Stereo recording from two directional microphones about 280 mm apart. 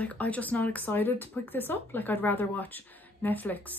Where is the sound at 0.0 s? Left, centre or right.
Centre.